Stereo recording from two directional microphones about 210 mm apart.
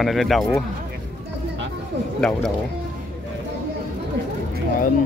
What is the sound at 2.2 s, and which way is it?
Speech, 5° left (ahead or behind).